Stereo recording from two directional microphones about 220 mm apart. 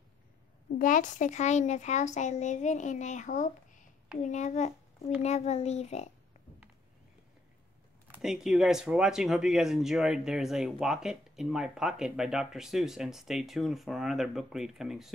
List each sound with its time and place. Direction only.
0.7 s speech: 35° left (ahead or behind)
8.1 s speech: centre (ahead or behind)